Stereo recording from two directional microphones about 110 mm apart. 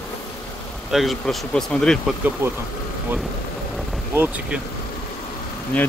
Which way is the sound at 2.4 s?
25° right (ahead or behind).